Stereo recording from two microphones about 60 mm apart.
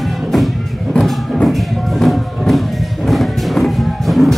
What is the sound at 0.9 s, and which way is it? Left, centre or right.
Music, centre.